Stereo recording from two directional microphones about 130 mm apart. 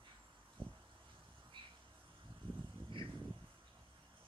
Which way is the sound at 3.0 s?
40° right (ahead or behind).